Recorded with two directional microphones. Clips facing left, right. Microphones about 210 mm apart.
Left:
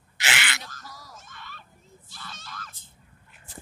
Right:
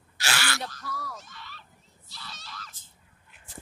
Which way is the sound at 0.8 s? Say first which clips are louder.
Right 9 dB; 60° right (ahead or behind).